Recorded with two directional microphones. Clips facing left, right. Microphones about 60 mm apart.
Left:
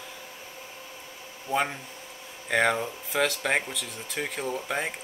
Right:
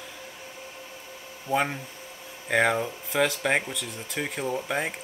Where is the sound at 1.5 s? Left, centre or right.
Centre.